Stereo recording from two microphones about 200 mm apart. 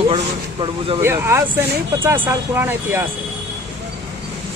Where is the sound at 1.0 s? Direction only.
10° right (ahead or behind).